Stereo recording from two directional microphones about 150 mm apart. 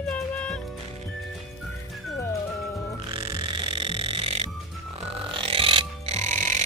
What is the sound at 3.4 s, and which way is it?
Music, 35° right (ahead or behind).